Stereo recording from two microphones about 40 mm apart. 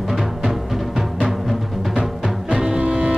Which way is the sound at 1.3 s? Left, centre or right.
Centre.